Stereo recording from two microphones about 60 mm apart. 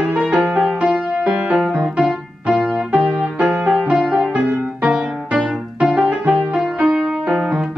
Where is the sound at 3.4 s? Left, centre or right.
Centre.